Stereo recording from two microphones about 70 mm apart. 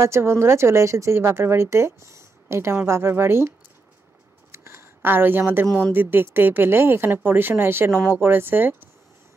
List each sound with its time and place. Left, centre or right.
0.0 s speech: right
4.5 s a sound: right
5.9 s speech: right